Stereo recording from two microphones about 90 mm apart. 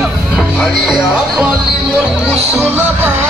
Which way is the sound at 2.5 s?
20° right (ahead or behind).